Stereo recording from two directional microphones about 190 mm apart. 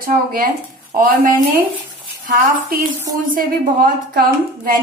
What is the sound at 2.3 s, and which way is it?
A woman's voice, 45° right (ahead or behind).